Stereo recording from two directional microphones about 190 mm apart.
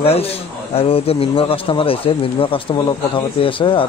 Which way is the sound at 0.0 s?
30° left (ahead or behind).